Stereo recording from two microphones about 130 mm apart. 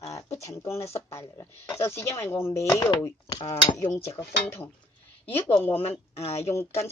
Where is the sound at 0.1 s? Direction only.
25° left (ahead or behind).